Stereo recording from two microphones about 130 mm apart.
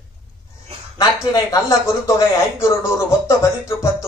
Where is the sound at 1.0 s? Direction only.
25° left (ahead or behind).